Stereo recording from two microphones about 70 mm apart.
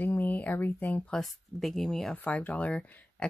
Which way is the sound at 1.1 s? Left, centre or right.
Centre.